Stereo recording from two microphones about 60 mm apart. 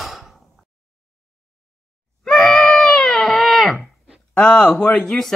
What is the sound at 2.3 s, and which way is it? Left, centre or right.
Screaming, centre.